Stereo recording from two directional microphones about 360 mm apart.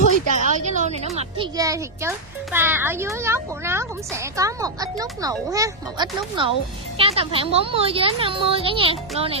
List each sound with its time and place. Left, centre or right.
0.3 s a woman's voice: centre